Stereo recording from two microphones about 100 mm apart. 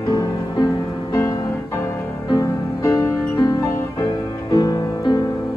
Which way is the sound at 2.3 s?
35° left (ahead or behind).